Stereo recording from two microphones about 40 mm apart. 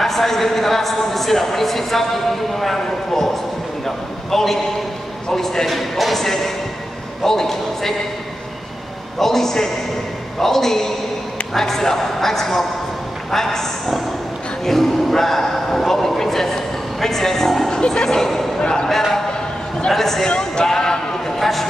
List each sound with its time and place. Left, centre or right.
0.0 s a man's voice: centre
5.7 s a man's voice: centre
9.2 s a man's voice: centre
18.6 s speech: left
19.9 s a man's voice: centre
20.2 s speech: left
21.4 s a sound: centre